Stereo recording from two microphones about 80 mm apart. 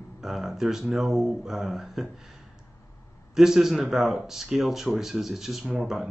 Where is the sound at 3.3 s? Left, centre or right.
Centre.